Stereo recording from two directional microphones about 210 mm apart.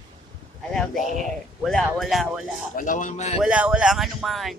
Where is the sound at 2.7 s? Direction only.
40° left (ahead or behind).